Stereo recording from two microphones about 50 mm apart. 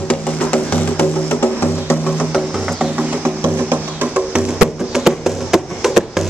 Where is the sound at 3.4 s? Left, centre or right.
Right.